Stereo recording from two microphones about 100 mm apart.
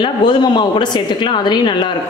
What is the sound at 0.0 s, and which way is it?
A woman's voice, 50° left (ahead or behind).